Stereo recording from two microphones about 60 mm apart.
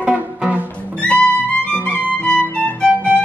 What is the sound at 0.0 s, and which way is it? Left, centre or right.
Music, right.